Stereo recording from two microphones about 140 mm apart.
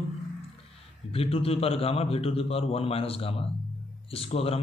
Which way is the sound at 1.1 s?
45° left (ahead or behind).